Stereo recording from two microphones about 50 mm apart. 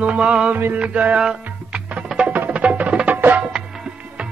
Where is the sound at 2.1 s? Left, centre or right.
Centre.